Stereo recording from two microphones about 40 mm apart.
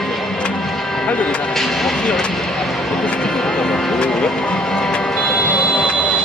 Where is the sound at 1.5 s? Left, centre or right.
Centre.